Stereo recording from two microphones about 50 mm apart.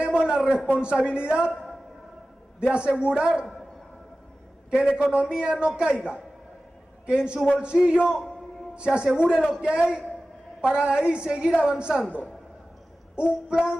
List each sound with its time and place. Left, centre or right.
0.0 s a man's voice: centre
4.9 s a woman's voice: right
9.6 s child singing: centre
10.6 s a woman's voice: centre
13.1 s child singing: centre